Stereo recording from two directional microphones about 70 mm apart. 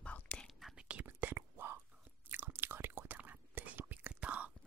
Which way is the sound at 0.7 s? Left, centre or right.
Centre.